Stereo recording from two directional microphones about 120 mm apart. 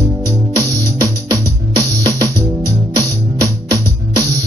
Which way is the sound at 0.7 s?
30° right (ahead or behind).